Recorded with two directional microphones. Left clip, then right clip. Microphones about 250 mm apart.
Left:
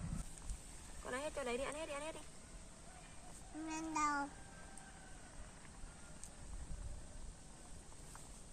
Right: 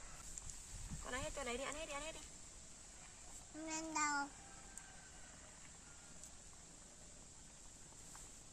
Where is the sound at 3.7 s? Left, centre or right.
Centre.